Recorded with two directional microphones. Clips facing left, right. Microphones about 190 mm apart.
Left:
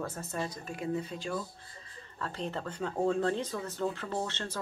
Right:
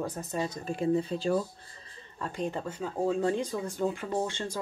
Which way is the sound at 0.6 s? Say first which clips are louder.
Right 7 dB; 30° right (ahead or behind).